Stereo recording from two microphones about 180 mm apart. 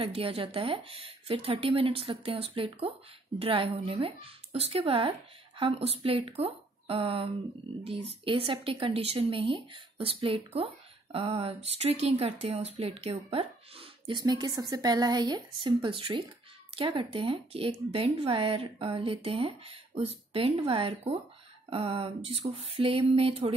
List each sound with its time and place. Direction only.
0.0 s speech: 30° right (ahead or behind)